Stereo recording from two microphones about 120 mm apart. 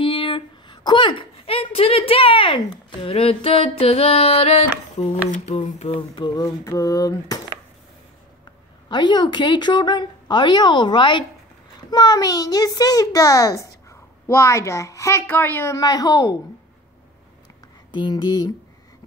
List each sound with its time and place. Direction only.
0.0 s a woman's voice: 45° left (ahead or behind); by 5.6 s 70° left (ahead or behind)
5.6 s a sound: 50° left (ahead or behind)
6.3 s a child's voice: 25° left (ahead or behind)
8.8 s a woman's voice: 40° left (ahead or behind)
17.9 s a woman's voice: 35° left (ahead or behind)